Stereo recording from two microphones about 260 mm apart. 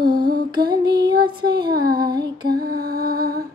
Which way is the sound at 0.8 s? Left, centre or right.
Right.